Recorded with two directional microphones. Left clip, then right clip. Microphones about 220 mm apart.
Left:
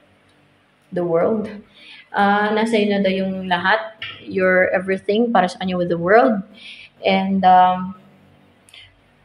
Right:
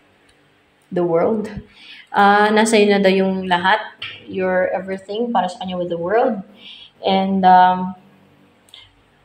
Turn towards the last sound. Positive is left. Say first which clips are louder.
# right 1 dB
turn(degrees=0)  # may be behind; listen again after turning